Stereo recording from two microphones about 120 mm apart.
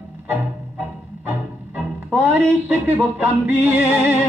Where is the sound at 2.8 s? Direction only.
15° right (ahead or behind).